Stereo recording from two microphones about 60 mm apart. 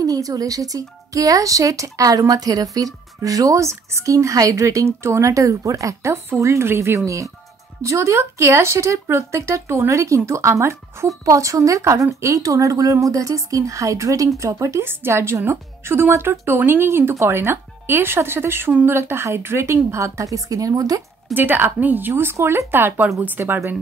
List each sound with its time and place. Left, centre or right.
0.0 s speech: right
6.7 s speech: right
7.8 s speech: right
9.8 s speech: right
11.1 s speech: right
14.9 s a woman's voice: right
17.1 s a woman's voice: right
21.3 s a woman's voice: right